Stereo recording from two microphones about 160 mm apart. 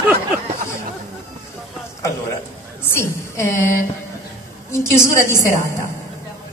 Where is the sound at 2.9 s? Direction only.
15° left (ahead or behind).